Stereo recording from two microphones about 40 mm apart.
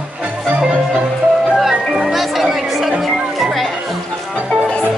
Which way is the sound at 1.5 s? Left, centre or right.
Centre.